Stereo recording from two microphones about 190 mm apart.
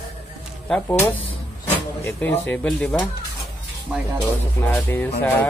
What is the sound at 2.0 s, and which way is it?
Speech, 10° left (ahead or behind).